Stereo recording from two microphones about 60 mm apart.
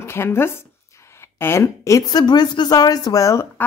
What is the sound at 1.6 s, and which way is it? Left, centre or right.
Speech, left.